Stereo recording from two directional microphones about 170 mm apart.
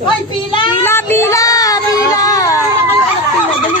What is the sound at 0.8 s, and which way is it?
Child singing, 15° left (ahead or behind).